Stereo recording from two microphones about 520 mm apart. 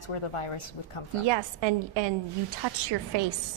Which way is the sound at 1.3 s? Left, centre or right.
Right.